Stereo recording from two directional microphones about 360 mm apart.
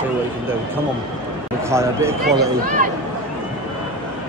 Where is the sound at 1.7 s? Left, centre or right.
Centre.